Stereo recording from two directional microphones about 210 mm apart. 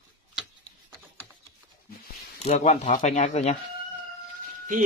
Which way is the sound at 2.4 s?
30° left (ahead or behind).